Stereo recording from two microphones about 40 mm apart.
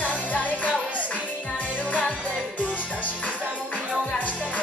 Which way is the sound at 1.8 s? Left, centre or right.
Left.